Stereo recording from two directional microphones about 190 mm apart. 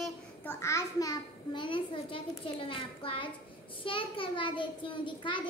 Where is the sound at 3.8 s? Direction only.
25° left (ahead or behind).